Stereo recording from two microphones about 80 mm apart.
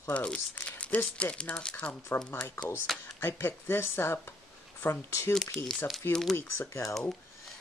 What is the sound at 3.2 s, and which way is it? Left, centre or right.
Speech, left.